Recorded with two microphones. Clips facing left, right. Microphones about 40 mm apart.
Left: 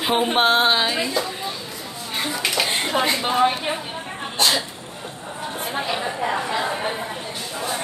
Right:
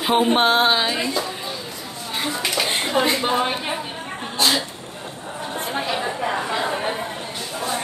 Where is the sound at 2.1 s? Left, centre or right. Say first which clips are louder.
Even; centre.